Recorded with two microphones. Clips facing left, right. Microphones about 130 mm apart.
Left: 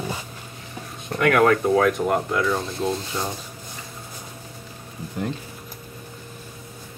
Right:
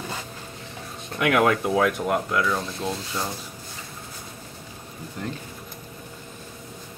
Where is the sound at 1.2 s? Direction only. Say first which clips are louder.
Left 3 dB; 10° right (ahead or behind).